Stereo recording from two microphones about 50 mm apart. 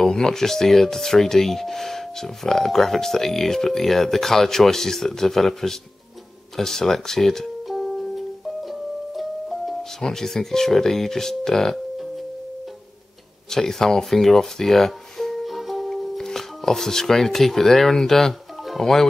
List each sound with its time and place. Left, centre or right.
0.0 s speech: centre
8.6 s music: centre
10.0 s speech: centre
13.5 s speech: centre